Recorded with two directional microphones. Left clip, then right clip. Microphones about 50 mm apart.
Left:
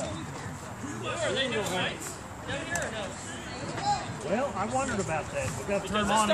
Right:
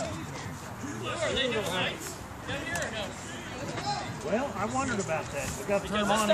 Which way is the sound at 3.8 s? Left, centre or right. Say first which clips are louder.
Left 5 dB; centre.